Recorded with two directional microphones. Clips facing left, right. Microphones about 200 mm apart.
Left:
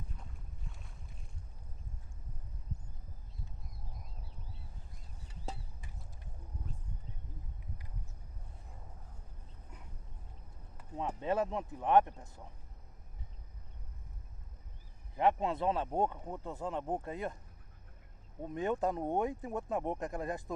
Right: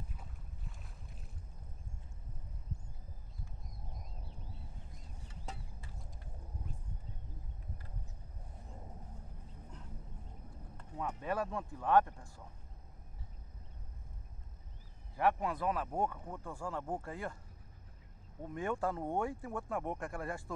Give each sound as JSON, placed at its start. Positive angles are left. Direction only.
{"t": 0.1, "sound": "boat", "side_deg": -5}
{"t": 3.9, "sound": "a sound", "side_deg": 0}
{"t": 11.0, "sound": "speech", "side_deg": 25}
{"t": 15.1, "sound": "speech", "side_deg": 25}
{"t": 18.4, "sound": "speech", "side_deg": 20}